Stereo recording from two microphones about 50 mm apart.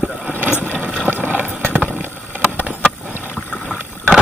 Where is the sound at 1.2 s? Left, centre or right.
Right.